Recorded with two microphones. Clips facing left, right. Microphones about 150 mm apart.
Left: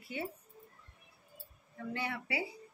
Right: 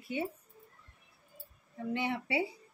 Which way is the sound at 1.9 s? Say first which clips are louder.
Right 5 dB; 20° right (ahead or behind).